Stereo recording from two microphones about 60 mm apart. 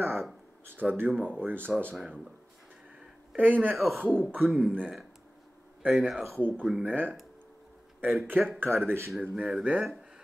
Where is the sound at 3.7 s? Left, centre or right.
Centre.